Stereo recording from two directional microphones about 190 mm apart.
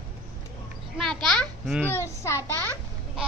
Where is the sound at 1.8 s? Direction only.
15° left (ahead or behind).